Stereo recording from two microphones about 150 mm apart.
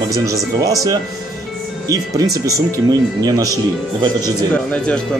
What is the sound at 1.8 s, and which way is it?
Speech, 25° right (ahead or behind).